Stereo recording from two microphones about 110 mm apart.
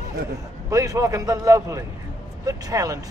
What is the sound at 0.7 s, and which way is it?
A man's voice, 30° right (ahead or behind).